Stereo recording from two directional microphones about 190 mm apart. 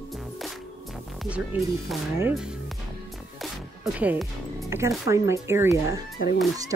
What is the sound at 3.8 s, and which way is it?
Speech, 10° right (ahead or behind).